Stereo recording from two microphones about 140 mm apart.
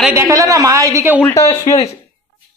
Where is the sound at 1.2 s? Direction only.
25° left (ahead or behind).